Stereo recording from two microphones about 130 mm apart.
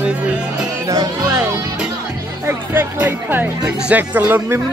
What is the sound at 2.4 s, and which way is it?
Speech, 15° right (ahead or behind).